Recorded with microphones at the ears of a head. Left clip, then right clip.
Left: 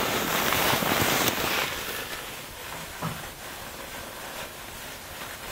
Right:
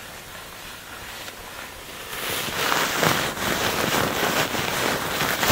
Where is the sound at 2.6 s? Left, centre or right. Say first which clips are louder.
Right 17 dB; right.